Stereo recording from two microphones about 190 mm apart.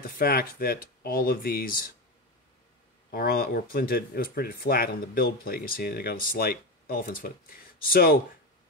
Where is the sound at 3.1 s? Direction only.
50° left (ahead or behind).